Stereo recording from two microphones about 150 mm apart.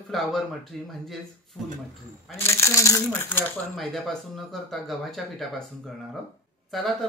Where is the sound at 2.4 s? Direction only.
20° left (ahead or behind); by 5.2 s centre (ahead or behind).